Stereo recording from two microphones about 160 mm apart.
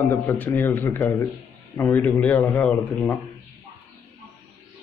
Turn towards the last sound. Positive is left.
turn(degrees=10)  # may be behind; listen again after turning